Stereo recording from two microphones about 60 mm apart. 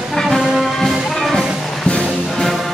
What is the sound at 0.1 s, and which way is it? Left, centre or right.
Music, centre.